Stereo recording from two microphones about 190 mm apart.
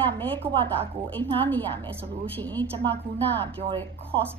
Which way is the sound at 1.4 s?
10° left (ahead or behind).